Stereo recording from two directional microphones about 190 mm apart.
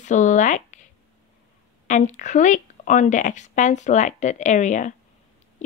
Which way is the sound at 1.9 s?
40° left (ahead or behind).